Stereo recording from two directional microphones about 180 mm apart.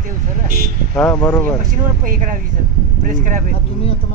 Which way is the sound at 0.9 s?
5° left (ahead or behind).